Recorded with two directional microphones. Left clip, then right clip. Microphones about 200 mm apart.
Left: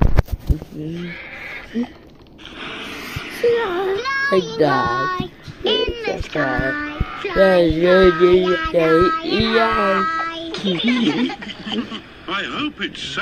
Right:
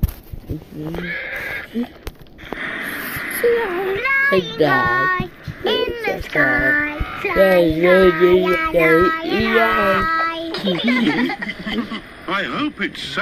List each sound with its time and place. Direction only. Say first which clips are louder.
1.0 s neigh: right 6 dB; 5° right (ahead or behind)
2.9 s a sound: right 5 dB; 25° right (ahead or behind)
4.7 s child singing: right 3 dB; 30° right (ahead or behind)
7.0 s a sound: right 1 dB; 10° right (ahead or behind)
7.2 s a sound: even; 30° right (ahead or behind)
7.5 s a child's voice: even; 5° right (ahead or behind)
8.1 s child singing: even; 30° right (ahead or behind)
8.5 s speech: right 1 dB; 25° right (ahead or behind)
8.9 s child singing: even; 30° right (ahead or behind)
9.4 s speech: right 2 dB; 5° right (ahead or behind)
10.0 s a child's voice: right 3 dB; 35° right (ahead or behind)